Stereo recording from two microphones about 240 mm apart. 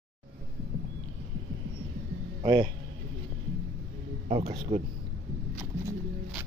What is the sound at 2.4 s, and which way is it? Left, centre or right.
Speech, right.